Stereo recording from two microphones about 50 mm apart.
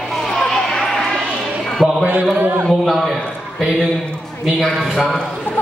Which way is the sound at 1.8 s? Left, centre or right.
Centre.